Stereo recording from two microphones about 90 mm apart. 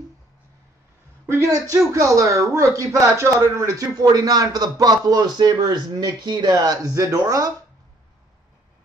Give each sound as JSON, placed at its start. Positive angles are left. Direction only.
{"t": 1.2, "sound": "speech", "side_deg": -35}